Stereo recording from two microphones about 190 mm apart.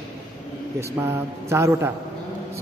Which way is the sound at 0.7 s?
15° right (ahead or behind).